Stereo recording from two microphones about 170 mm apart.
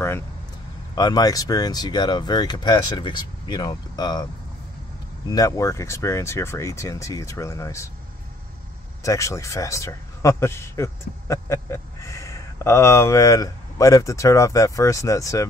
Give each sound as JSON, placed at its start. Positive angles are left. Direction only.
{"t": 0.9, "sound": "speech", "side_deg": 25}
{"t": 5.3, "sound": "speech", "side_deg": 20}
{"t": 9.0, "sound": "speech", "side_deg": 20}